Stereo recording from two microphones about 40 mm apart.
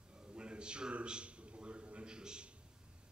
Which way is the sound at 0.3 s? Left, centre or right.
Right.